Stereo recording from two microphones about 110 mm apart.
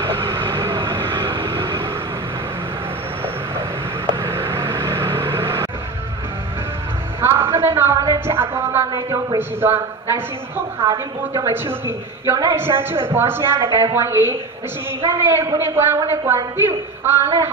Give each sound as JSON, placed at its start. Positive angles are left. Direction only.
{"t": 0.3, "sound": "vehicle", "side_deg": -50}
{"t": 4.2, "sound": "vehicle", "side_deg": -25}
{"t": 7.2, "sound": "a sound", "side_deg": -25}
{"t": 8.0, "sound": "music", "side_deg": -30}
{"t": 8.9, "sound": "speech", "side_deg": -35}
{"t": 9.4, "sound": "a man's voice", "side_deg": -20}
{"t": 10.8, "sound": "speech", "side_deg": -35}
{"t": 11.5, "sound": "a man's voice", "side_deg": -20}